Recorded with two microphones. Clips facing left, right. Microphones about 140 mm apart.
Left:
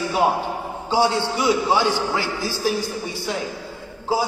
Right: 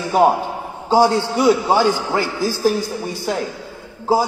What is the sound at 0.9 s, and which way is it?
A man's voice, 45° right (ahead or behind).